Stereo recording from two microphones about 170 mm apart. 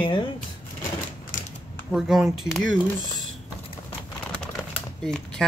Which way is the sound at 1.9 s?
Centre (ahead or behind).